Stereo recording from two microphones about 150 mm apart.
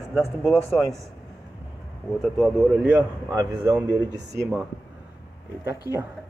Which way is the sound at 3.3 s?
25° right (ahead or behind).